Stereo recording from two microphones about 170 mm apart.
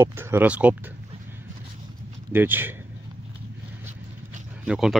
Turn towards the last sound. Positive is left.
turn(degrees=-5)  # may be behind; listen again after turning